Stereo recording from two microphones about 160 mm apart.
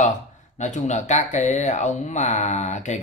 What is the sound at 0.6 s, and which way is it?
Speech, 50° left (ahead or behind).